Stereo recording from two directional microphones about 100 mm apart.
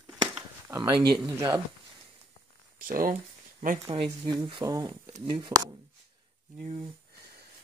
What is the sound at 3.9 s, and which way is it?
Speech, 65° right (ahead or behind).